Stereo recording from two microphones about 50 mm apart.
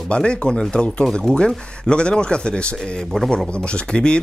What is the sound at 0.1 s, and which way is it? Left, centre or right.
A man's voice, left.